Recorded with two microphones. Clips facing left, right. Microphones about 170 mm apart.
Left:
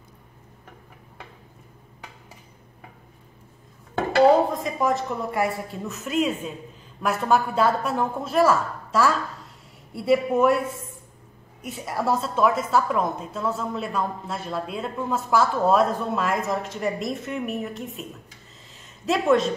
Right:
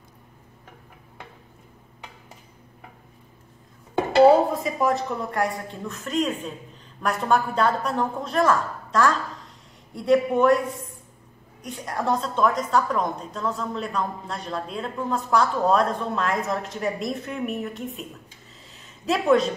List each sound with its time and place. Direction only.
3.9 s dishes: 15° right (ahead or behind)
4.6 s a woman's voice: centre (ahead or behind)
11.6 s a woman's voice: 5° left (ahead or behind)
18.7 s a sound: centre (ahead or behind)